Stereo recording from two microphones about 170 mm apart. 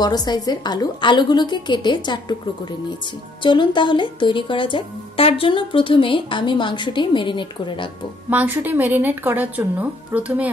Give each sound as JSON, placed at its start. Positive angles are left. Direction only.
{"t": 0.0, "sound": "speech", "side_deg": 25}
{"t": 8.3, "sound": "a woman's voice", "side_deg": -10}